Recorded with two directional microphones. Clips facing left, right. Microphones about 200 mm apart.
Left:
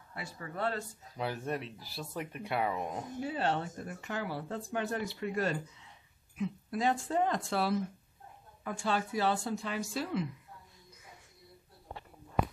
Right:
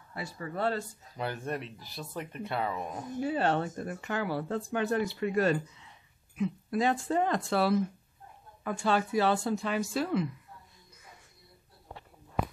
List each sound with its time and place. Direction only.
0.1 s speech: 35° right (ahead or behind)
1.1 s speech: 5° left (ahead or behind); by 3.1 s 20° left (ahead or behind)
3.3 s speech: 55° right (ahead or behind)